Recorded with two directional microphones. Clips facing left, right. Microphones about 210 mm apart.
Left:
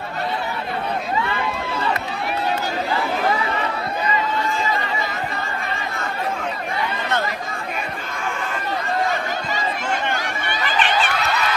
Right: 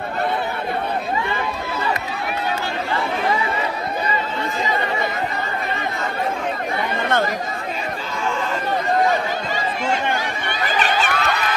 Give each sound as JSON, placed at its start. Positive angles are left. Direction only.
{"t": 10.8, "sound": "crowd", "side_deg": -40}